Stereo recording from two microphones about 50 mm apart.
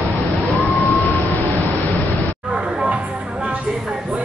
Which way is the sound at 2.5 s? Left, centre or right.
Right.